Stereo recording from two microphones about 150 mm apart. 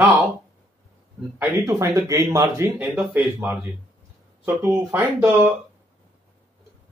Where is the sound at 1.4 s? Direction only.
20° right (ahead or behind).